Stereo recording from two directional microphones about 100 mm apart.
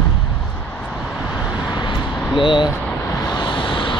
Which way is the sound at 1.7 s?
50° left (ahead or behind).